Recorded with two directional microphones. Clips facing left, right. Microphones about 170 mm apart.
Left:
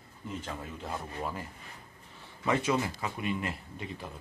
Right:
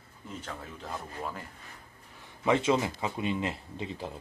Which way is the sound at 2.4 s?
25° right (ahead or behind).